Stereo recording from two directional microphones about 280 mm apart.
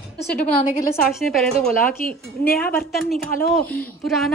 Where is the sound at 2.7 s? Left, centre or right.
Centre.